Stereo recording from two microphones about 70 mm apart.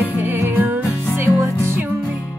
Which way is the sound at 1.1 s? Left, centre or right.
Right.